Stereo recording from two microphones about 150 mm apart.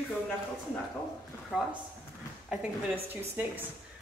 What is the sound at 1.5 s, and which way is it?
Speech, 5° left (ahead or behind).